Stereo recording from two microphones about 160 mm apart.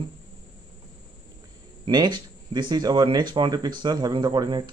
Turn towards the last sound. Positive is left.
turn(degrees=-25)  # may be behind; listen again after turning